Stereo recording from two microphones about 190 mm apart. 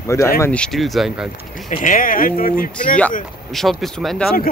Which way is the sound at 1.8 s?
45° left (ahead or behind).